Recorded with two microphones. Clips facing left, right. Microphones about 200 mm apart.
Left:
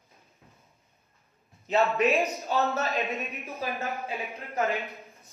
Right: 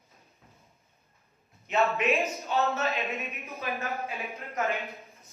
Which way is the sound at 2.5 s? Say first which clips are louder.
Left 1 dB; 40° left (ahead or behind).